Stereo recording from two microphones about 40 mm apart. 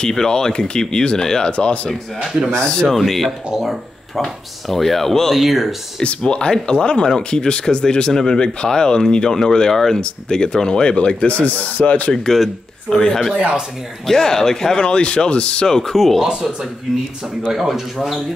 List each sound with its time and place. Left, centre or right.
0.1 s speech: centre
2.9 s speech: centre
5.3 s speech: centre
6.0 s speech: left
12.1 s speech: centre
14.9 s speech: left
15.6 s speech: centre
16.2 s speech: centre
17.4 s speech: centre